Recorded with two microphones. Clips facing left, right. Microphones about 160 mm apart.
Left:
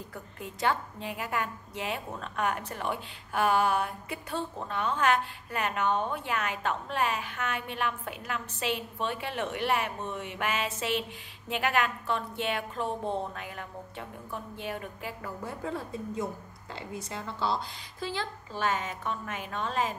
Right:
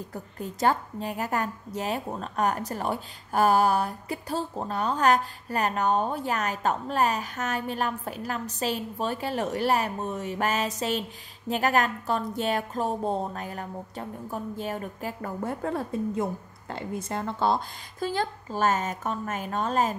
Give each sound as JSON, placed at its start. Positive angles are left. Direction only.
{"t": 0.1, "sound": "a woman's voice", "side_deg": -40}